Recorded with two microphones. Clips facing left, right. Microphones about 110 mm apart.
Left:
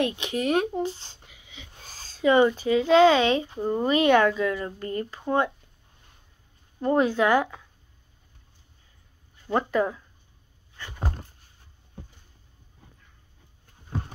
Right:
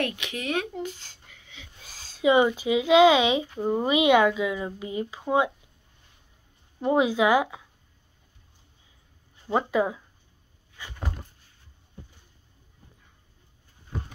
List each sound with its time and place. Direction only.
0.0 s speech: 30° left (ahead or behind)
1.3 s whispering: 5° left (ahead or behind)
1.9 s speech: 10° right (ahead or behind)
6.8 s speech: 10° right (ahead or behind)
9.5 s speech: 5° right (ahead or behind)
10.8 s a sound: 10° right (ahead or behind)